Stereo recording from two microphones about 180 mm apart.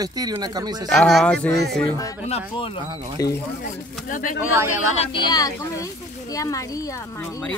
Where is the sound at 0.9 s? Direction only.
Centre (ahead or behind).